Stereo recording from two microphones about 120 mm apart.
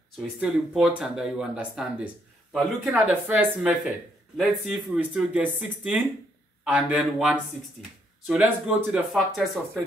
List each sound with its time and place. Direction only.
0.2 s speech: 5° right (ahead or behind)
3.1 s speech: 15° right (ahead or behind); by 9.8 s centre (ahead or behind)